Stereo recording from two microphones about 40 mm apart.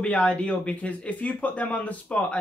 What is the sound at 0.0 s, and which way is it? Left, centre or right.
Speech, left.